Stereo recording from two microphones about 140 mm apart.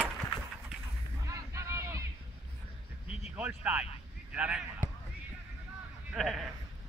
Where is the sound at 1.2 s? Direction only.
20° right (ahead or behind).